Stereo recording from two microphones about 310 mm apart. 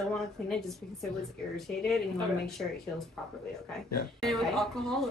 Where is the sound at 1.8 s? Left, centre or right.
Centre.